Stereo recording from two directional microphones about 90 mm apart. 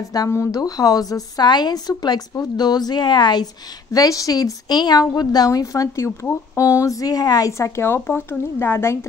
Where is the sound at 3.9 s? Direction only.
40° left (ahead or behind).